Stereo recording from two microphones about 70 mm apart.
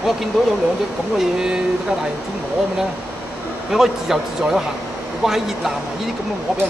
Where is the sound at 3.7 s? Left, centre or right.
Centre.